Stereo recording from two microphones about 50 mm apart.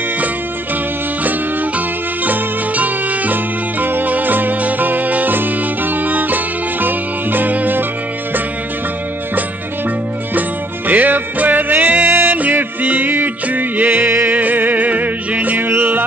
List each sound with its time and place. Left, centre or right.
2.2 s music: right
10.9 s music: right